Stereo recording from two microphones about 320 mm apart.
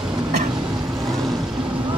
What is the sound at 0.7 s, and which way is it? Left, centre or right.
Vehicle, centre.